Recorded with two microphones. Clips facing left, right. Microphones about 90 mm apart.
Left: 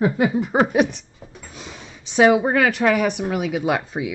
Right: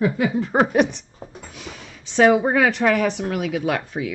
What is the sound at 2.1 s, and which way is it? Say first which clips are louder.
Speech: even; 5° left (ahead or behind).